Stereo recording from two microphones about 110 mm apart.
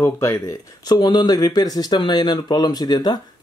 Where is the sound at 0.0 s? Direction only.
25° left (ahead or behind).